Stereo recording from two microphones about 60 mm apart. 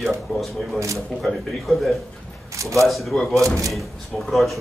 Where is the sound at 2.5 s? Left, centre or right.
Right.